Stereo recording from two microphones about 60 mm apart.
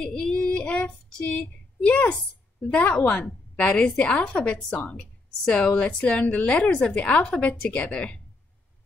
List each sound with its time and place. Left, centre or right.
0.0 s child singing: centre
1.9 s a woman's voice: centre